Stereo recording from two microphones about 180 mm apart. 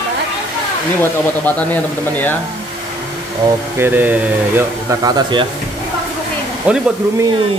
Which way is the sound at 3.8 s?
10° right (ahead or behind).